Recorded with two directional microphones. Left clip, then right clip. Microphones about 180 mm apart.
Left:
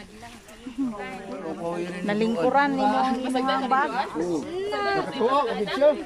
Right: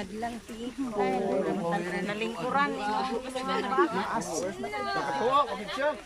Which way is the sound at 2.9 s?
65° left (ahead or behind).